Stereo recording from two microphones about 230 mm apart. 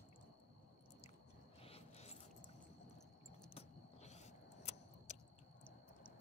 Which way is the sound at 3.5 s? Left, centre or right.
Left.